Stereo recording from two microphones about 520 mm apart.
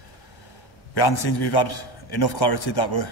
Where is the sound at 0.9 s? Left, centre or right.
Left.